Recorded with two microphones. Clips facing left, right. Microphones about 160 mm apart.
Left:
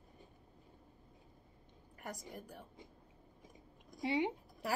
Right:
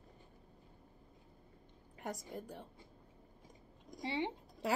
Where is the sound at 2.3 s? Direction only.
20° right (ahead or behind).